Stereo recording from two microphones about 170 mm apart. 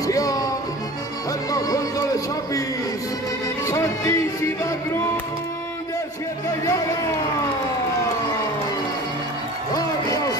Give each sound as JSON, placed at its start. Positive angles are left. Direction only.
{"t": 0.0, "sound": "music", "side_deg": 20}
{"t": 1.5, "sound": "music", "side_deg": 20}
{"t": 3.6, "sound": "music", "side_deg": 20}